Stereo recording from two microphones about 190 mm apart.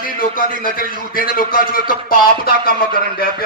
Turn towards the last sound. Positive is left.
turn(degrees=50)  # may be behind; listen again after turning